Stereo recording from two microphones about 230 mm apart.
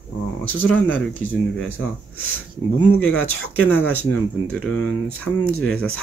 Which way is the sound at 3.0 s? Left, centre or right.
Left.